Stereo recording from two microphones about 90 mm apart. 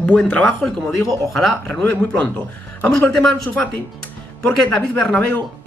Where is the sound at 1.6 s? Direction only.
15° left (ahead or behind).